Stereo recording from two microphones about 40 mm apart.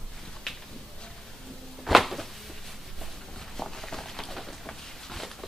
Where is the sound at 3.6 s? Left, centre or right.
Centre.